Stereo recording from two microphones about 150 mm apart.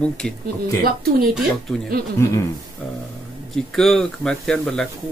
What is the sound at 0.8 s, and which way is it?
Speech, 90° right.